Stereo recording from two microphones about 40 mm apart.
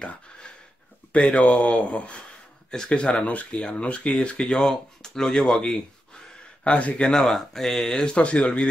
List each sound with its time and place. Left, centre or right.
1.1 s speech: left
2.7 s speech: centre
6.6 s speech: left
7.2 s speech: centre; by 8.6 s left